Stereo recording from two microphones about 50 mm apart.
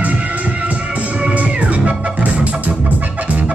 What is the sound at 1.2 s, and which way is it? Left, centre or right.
Music, right.